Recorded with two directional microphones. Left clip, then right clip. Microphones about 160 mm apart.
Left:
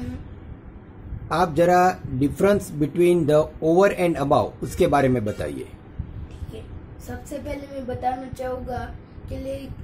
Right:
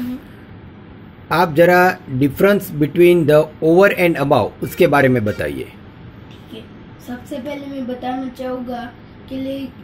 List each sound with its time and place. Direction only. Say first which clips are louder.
1.3 s speech: right 6 dB; 10° left (ahead or behind)
7.4 s a woman's voice: right 4 dB; 25° left (ahead or behind)